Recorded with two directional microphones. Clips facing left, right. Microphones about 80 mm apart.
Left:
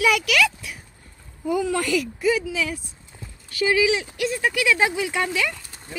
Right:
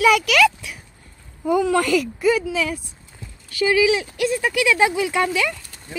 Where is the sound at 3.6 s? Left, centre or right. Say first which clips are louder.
Right 3 dB; right.